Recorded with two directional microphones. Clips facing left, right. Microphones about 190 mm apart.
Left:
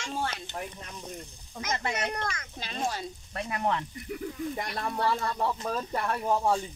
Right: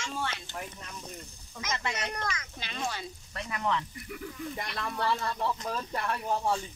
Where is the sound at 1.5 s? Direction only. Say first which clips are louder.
Left 3 dB; 50° left (ahead or behind); by 6.0 s 35° left (ahead or behind).